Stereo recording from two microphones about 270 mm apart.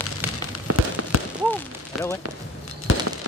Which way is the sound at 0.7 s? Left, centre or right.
Right.